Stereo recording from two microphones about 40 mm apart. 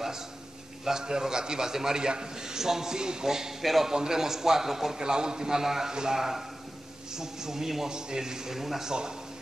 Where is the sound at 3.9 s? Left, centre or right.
Centre.